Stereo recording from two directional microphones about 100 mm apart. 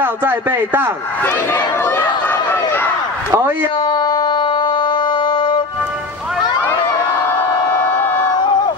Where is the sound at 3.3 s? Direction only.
25° right (ahead or behind).